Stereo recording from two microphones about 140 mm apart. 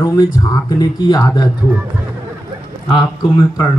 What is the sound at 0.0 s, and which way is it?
Speech, 25° left (ahead or behind).